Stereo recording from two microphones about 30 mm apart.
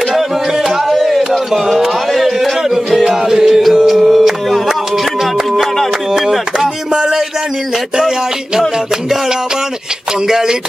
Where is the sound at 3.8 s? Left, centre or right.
Centre.